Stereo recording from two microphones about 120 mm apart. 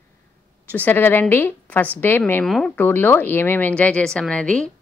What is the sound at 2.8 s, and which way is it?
A woman's voice, 15° left (ahead or behind).